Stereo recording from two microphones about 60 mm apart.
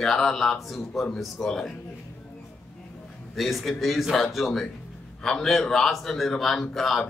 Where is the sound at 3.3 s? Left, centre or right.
Centre.